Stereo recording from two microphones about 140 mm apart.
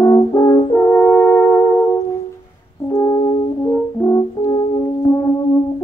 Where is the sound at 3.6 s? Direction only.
20° left (ahead or behind).